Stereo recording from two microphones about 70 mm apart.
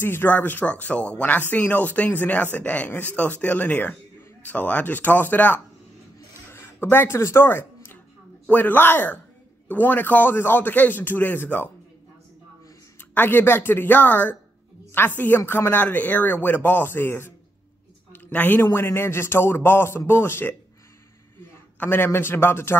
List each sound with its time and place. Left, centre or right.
0.0 s speech: left
6.5 s a sound: left
8.5 s speech: left
13.1 s a man's voice: left
21.7 s a man's voice: left